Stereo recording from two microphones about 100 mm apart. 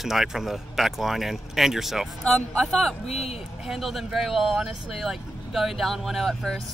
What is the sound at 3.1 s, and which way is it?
Speech, 90° left.